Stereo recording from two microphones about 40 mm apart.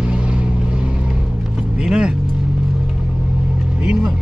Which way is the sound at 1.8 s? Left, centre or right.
Centre.